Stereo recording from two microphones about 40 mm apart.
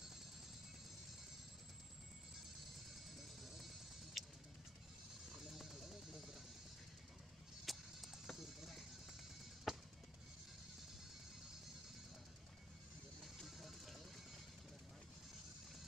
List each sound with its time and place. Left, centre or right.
3.4 s music: centre
5.4 s music: centre
7.6 s music: centre
9.7 s drum: centre
13.5 s a sound: centre